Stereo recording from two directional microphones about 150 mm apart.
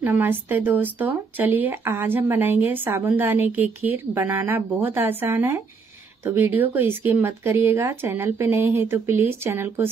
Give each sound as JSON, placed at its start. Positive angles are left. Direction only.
{"t": 0.0, "sound": "speech", "side_deg": -10}